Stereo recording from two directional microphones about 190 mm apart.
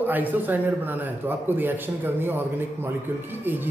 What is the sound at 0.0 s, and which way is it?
A man's voice, 10° right (ahead or behind).